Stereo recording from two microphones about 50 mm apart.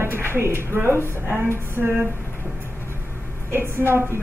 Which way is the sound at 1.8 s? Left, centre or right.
Left.